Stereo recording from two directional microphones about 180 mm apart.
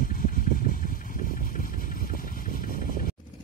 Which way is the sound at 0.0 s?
50° left (ahead or behind).